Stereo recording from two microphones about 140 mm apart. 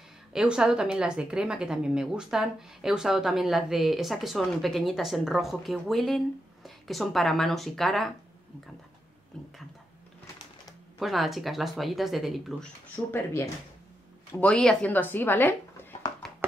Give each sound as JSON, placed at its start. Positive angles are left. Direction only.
{"t": 0.3, "sound": "a woman's voice", "side_deg": -5}
{"t": 11.0, "sound": "a woman's voice", "side_deg": 0}
{"t": 12.9, "sound": "speech", "side_deg": 15}